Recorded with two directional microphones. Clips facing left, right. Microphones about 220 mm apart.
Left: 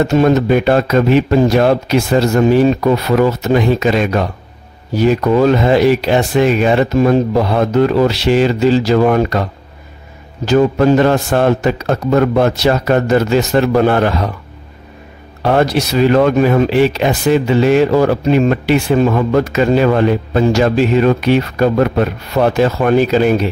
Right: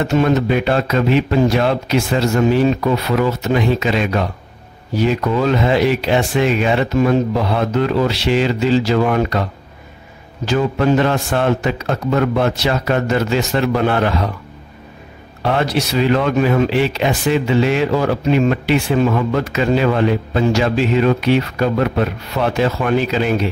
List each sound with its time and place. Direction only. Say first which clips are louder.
0.0 s speech: left 4 dB; 40° left (ahead or behind)
10.4 s speech: left 6 dB; 40° left (ahead or behind)
15.4 s speech: left 5 dB; 45° left (ahead or behind)